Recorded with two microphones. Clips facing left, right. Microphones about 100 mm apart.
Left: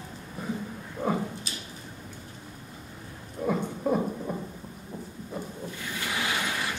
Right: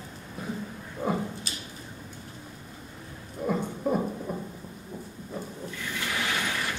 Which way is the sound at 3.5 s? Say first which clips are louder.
Left 1 dB; centre (ahead or behind).